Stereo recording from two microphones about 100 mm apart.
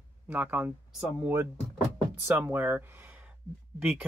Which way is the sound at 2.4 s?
20° right (ahead or behind).